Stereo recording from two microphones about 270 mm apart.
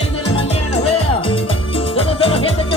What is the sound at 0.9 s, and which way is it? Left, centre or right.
Music, centre.